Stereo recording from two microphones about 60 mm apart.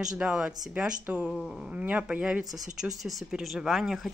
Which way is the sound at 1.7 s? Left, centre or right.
Right.